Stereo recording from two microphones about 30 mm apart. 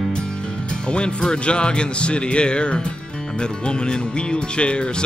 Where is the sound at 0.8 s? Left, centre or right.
Left.